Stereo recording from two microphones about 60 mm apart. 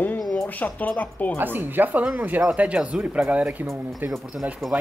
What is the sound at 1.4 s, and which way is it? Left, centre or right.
Speech, right.